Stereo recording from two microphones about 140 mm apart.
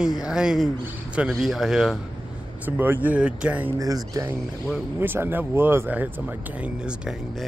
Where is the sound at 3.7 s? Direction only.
25° right (ahead or behind).